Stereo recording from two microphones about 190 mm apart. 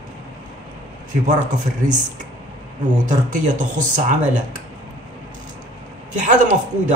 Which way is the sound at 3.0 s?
40° right (ahead or behind).